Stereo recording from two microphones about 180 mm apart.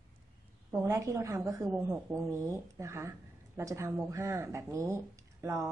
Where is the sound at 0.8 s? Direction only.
15° right (ahead or behind).